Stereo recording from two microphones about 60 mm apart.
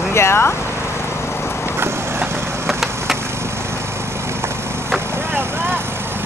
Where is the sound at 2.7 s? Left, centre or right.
Centre.